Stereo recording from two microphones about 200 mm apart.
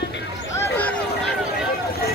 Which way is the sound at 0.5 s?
10° left (ahead or behind).